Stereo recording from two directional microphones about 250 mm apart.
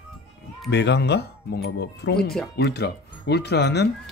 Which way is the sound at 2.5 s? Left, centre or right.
Left.